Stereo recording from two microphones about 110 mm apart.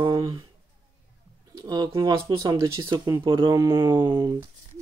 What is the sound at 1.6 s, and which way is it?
Speech, 35° right (ahead or behind).